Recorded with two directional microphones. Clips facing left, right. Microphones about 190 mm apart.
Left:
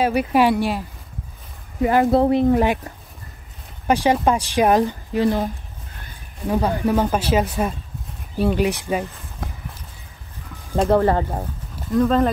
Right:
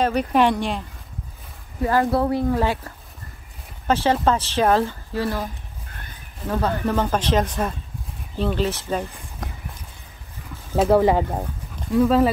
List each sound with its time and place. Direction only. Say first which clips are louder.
0.0 s speech: left 1 dB; 10° left (ahead or behind)
1.8 s speech: left 4 dB; 20° left (ahead or behind)
10.8 s speech: even; 10° right (ahead or behind)